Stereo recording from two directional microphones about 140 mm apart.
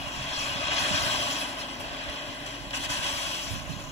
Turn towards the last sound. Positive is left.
turn(degrees=50)  # may be behind; listen again after turning